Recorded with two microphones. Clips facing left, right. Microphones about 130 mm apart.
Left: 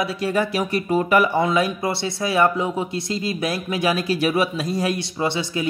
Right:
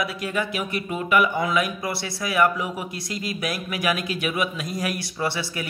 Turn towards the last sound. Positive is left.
turn(degrees=20)  # may be behind; listen again after turning